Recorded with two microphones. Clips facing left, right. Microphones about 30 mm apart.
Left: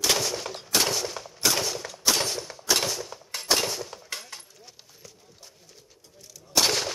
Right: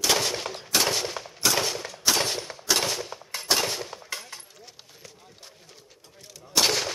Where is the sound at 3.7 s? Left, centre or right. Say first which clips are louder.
Right 1 dB; right.